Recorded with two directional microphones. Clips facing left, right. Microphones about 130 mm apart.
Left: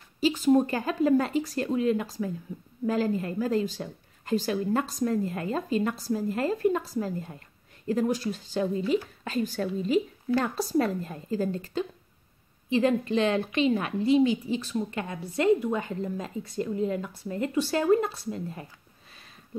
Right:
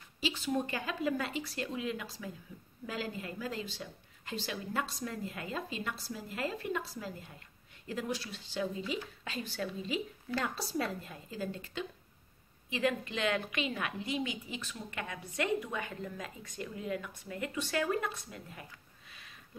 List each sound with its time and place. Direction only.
0.2 s a woman's voice: 45° left (ahead or behind)